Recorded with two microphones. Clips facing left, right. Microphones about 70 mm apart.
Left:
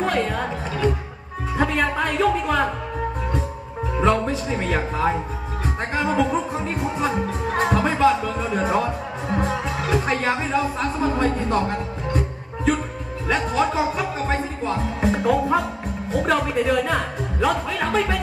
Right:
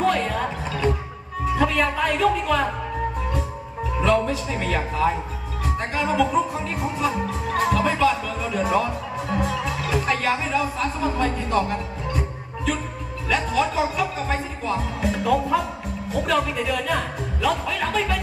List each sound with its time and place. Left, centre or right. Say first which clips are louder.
0.0 s music: right 1 dB; left
1.6 s speech: left 1 dB; left
4.0 s speech: left 1 dB; left
13.3 s speech: left 1 dB; left